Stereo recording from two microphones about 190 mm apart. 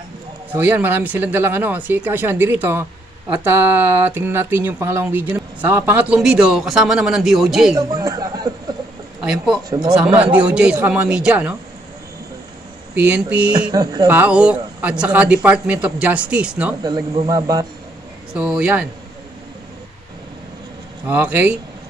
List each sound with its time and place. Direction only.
0.5 s speech: 10° right (ahead or behind)
7.7 s a man's voice: 15° right (ahead or behind)
9.2 s speech: 5° right (ahead or behind)
9.7 s speech: 20° right (ahead or behind)
9.9 s speech: 5° right (ahead or behind)
12.9 s speech: 10° right (ahead or behind)
13.5 s speech: 20° right (ahead or behind)
14.0 s speech: 10° right (ahead or behind)
16.8 s speech: 25° right (ahead or behind)
18.3 s speech: 5° right (ahead or behind)
21.1 s speech: 5° right (ahead or behind)